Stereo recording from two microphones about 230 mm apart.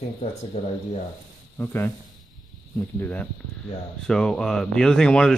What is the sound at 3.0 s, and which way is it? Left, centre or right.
Speech, centre.